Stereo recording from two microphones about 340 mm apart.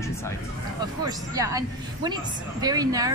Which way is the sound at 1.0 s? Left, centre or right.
Centre.